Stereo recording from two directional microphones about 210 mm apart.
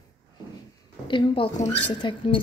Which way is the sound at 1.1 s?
25° left (ahead or behind).